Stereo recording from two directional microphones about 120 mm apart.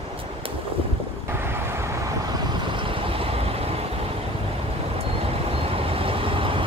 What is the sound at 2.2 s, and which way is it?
Waves, 40° right (ahead or behind).